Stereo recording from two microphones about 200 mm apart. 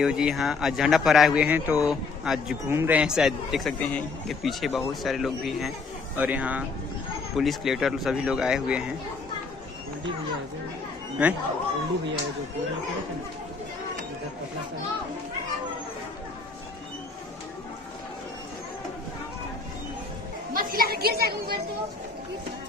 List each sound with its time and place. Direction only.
0.0 s a man's voice: 5° right (ahead or behind)
11.2 s a man's voice: 5° right (ahead or behind)
20.5 s a woman's voice: 45° right (ahead or behind)